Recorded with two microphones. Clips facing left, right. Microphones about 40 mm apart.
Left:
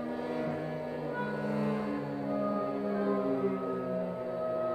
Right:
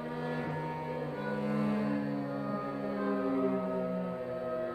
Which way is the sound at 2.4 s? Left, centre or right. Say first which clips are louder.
Left 3 dB; centre.